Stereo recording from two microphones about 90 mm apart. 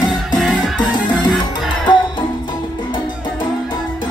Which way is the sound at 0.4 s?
5° left (ahead or behind).